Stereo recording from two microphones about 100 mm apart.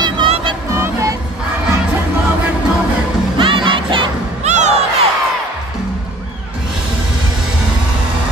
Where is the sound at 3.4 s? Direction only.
60° right (ahead or behind).